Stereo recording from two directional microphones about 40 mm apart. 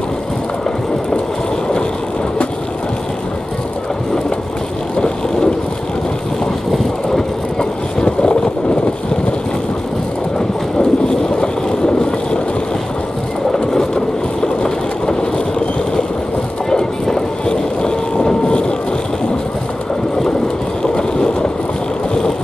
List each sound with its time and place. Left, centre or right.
8.0 s vehicle: left
10.8 s vehicle: left
13.5 s vehicle: centre
16.7 s vehicle: centre
20.8 s vehicle: left